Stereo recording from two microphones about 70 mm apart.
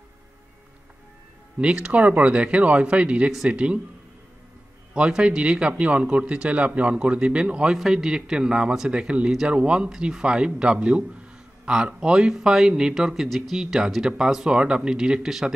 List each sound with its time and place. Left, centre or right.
1.6 s a man's voice: centre
4.9 s a man's voice: centre